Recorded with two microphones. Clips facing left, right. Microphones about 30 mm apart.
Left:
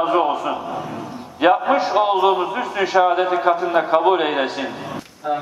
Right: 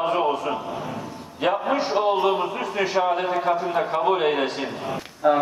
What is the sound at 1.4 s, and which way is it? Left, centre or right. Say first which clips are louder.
A man's voice: left 6 dB; left.